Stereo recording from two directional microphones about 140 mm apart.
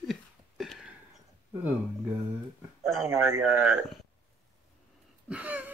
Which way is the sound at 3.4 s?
5° right (ahead or behind).